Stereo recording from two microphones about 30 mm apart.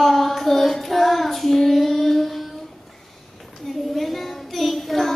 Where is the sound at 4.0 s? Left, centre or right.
Centre.